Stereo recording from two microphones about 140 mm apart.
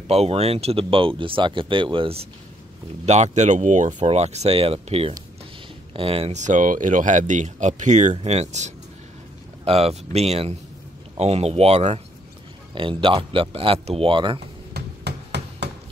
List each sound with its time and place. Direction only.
0.1 s speech: 45° right (ahead or behind)
3.1 s speech: 55° right (ahead or behind)
12.7 s speech: 35° right (ahead or behind)